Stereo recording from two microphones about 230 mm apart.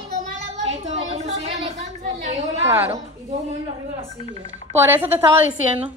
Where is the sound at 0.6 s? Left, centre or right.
Right.